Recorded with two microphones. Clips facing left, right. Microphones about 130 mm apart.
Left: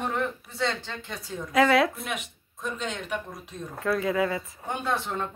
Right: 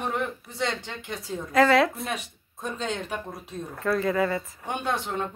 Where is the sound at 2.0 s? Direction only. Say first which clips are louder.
Right 2 dB; 35° right (ahead or behind).